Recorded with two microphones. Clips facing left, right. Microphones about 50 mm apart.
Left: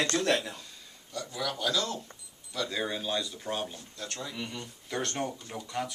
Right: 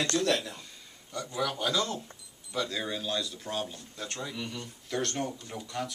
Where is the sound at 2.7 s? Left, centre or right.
Centre.